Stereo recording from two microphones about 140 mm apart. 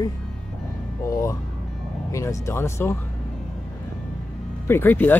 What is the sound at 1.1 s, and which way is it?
Speech, 25° left (ahead or behind).